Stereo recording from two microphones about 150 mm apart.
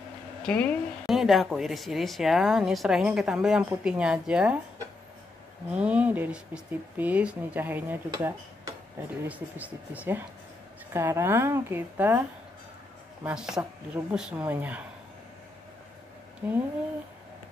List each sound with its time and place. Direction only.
0.4 s a woman's voice: 5° left (ahead or behind)
5.8 s a woman's voice: 10° right (ahead or behind)
16.4 s speech: 15° right (ahead or behind)